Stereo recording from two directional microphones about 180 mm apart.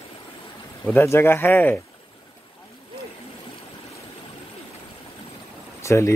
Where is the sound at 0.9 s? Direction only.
10° left (ahead or behind).